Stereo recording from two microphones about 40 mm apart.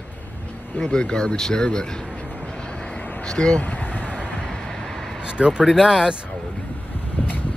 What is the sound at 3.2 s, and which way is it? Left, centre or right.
Speech, left.